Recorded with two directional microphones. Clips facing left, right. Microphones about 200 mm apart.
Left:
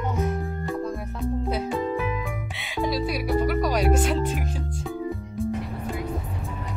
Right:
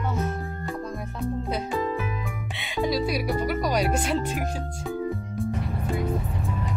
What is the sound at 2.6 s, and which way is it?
Music, centre (ahead or behind).